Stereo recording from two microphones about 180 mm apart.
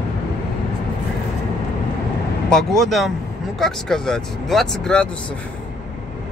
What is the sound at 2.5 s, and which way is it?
Speech, centre (ahead or behind).